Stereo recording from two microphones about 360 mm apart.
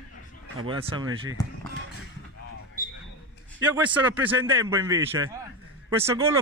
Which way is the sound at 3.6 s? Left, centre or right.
Centre.